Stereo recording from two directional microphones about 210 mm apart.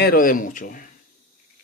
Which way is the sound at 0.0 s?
45° left (ahead or behind).